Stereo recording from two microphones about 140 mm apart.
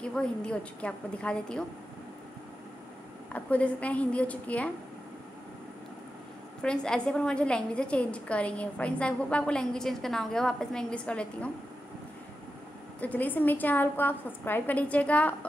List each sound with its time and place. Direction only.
0.0 s a woman's voice: 5° left (ahead or behind)
3.3 s a woman's voice: 10° left (ahead or behind)
6.6 s a woman's voice: 5° left (ahead or behind)
13.0 s a woman's voice: 10° left (ahead or behind)